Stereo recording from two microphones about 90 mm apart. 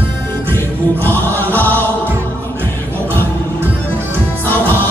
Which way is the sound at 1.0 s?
20° left (ahead or behind).